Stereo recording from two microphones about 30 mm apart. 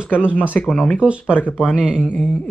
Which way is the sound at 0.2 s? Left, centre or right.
Right.